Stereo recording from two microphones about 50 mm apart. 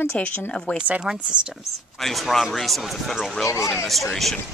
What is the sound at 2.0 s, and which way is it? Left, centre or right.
Speech, centre.